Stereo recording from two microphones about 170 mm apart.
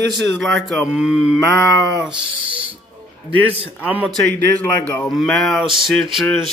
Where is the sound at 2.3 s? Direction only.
30° right (ahead or behind).